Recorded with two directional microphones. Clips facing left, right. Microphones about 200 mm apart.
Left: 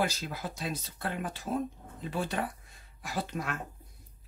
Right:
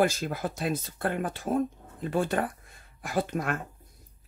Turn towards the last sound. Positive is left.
turn(degrees=-50)  # may be behind; listen again after turning